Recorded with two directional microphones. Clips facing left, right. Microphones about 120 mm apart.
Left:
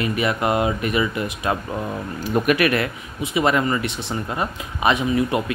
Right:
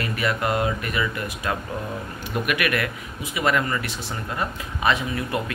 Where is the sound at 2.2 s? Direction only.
35° left (ahead or behind).